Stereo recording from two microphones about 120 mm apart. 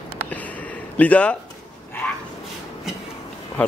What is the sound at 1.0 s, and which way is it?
Speech, 10° left (ahead or behind).